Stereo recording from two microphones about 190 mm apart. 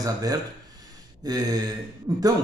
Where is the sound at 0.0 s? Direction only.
20° right (ahead or behind).